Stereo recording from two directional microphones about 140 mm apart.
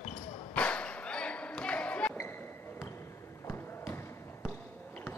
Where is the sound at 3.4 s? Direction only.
15° left (ahead or behind).